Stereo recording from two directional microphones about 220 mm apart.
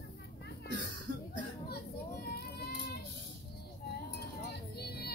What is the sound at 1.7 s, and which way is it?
Children playing, 45° left (ahead or behind).